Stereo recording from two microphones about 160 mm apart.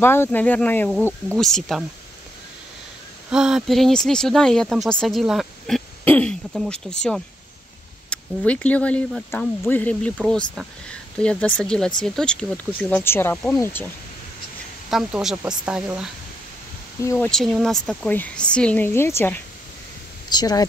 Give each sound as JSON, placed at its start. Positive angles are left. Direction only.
{"t": 0.0, "sound": "speech", "side_deg": 15}
{"t": 3.3, "sound": "speech", "side_deg": -5}
{"t": 6.0, "sound": "speech", "side_deg": 10}
{"t": 14.9, "sound": "speech", "side_deg": 0}
{"t": 17.0, "sound": "speech", "side_deg": 20}
{"t": 17.3, "sound": "speech", "side_deg": 5}
{"t": 20.2, "sound": "speech", "side_deg": 25}